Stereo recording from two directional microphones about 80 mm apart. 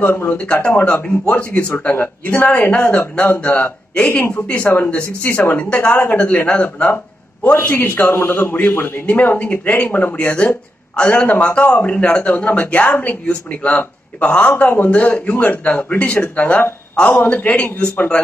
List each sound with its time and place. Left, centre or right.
0.0 s a man's voice: left
0.4 s a man's voice: centre